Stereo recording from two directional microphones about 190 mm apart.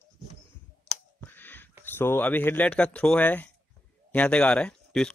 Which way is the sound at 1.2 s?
10° left (ahead or behind).